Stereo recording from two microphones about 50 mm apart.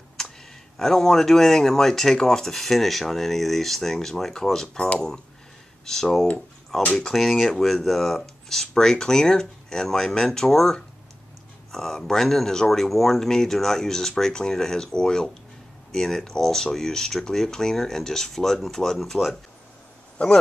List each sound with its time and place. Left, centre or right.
0.2 s computer keyboard: centre
0.7 s speech: centre
5.9 s speech: centre
20.2 s speech: left